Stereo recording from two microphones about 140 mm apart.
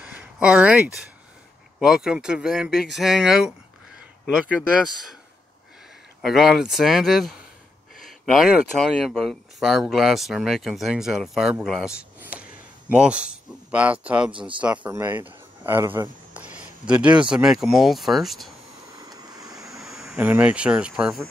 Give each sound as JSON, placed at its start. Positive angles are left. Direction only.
{"t": 0.0, "sound": "a sound", "side_deg": -10}
{"t": 1.8, "sound": "speech", "side_deg": -5}
{"t": 6.2, "sound": "speech", "side_deg": 0}
{"t": 16.5, "sound": "speech", "side_deg": -5}
{"t": 18.9, "sound": "vehicle", "side_deg": -25}
{"t": 19.7, "sound": "speech", "side_deg": -5}